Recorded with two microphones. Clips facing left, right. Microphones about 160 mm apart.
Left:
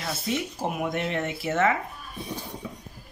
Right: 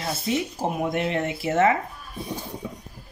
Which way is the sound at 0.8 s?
30° right (ahead or behind).